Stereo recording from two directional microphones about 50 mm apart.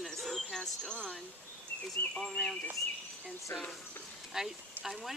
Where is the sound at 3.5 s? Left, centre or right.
Left.